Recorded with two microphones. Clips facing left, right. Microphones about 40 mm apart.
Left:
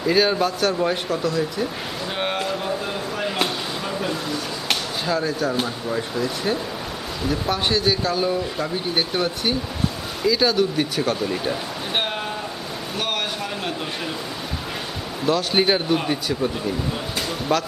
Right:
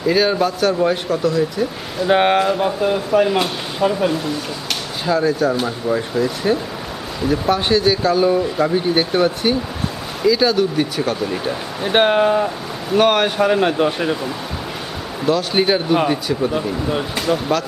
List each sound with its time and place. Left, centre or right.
0.0 s speech: centre
2.0 s speech: right
2.4 s speech: right
5.0 s speech: centre
11.8 s speech: right
12.9 s speech: centre
13.2 s speech: right
15.2 s speech: centre
16.5 s speech: right